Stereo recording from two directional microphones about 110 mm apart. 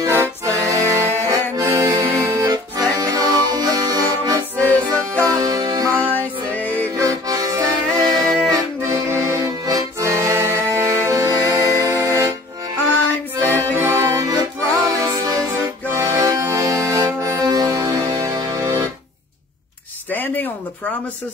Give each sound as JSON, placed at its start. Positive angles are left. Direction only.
{"t": 0.0, "sound": "accordion", "side_deg": -25}
{"t": 2.3, "sound": "accordion", "side_deg": -35}
{"t": 4.6, "sound": "music", "side_deg": 15}
{"t": 5.4, "sound": "music", "side_deg": -35}
{"t": 5.9, "sound": "music", "side_deg": 15}
{"t": 7.0, "sound": "accordion", "side_deg": -30}
{"t": 12.8, "sound": "music", "side_deg": 15}
{"t": 13.9, "sound": "accordion", "side_deg": -30}
{"t": 14.9, "sound": "music", "side_deg": -30}
{"t": 15.8, "sound": "accordion", "side_deg": -20}
{"t": 16.2, "sound": "music", "side_deg": -30}
{"t": 20.1, "sound": "a sound", "side_deg": 15}